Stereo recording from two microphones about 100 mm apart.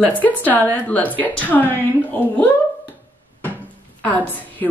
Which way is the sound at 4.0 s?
15° left (ahead or behind).